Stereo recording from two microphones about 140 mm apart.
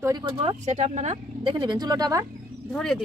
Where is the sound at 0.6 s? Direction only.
55° right (ahead or behind).